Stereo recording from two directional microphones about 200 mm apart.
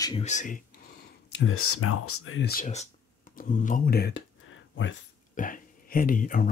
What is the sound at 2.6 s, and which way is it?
Speech, 35° left (ahead or behind).